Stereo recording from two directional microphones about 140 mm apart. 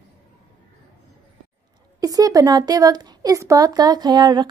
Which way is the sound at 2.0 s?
25° right (ahead or behind).